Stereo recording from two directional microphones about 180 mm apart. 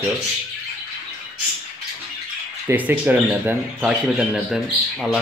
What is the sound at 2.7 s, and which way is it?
Speech, 10° right (ahead or behind).